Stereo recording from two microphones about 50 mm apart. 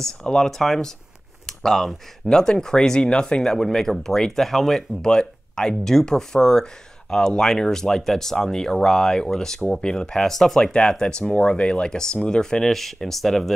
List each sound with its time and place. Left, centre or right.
0.0 s speech: centre
1.4 s a sound: centre
2.2 s speech: centre
3.5 s speech: centre